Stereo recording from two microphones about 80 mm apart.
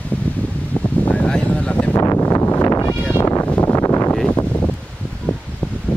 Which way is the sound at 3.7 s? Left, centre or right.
Left.